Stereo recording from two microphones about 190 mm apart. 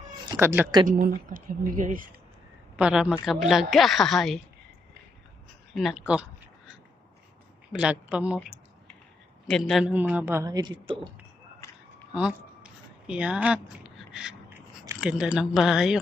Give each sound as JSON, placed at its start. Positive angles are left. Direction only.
{"t": 0.2, "sound": "cat", "side_deg": -15}
{"t": 0.8, "sound": "a woman's voice", "side_deg": -45}
{"t": 2.7, "sound": "a woman's voice", "side_deg": -5}
{"t": 5.8, "sound": "a woman's voice", "side_deg": -5}
{"t": 7.7, "sound": "a woman's voice", "side_deg": -5}
{"t": 9.5, "sound": "a woman's voice", "side_deg": 0}
{"t": 12.1, "sound": "a sound", "side_deg": -5}
{"t": 15.0, "sound": "a woman's voice", "side_deg": -5}